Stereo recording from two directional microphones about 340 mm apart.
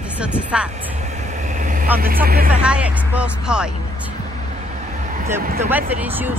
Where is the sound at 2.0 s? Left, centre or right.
Right.